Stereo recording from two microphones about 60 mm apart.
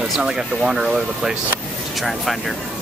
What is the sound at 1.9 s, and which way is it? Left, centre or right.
Speech, centre.